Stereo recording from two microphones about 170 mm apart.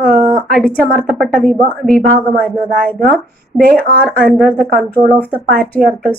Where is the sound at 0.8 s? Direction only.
5° left (ahead or behind).